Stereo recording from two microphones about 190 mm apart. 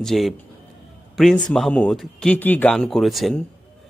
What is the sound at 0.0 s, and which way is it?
Speech, centre (ahead or behind).